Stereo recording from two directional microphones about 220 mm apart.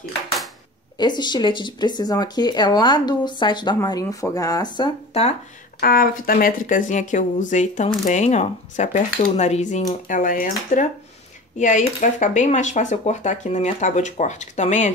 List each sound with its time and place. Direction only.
0.9 s speech: 20° left (ahead or behind)
5.8 s speech: 40° left (ahead or behind)